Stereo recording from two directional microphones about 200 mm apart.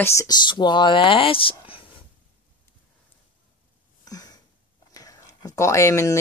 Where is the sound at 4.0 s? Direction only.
20° left (ahead or behind).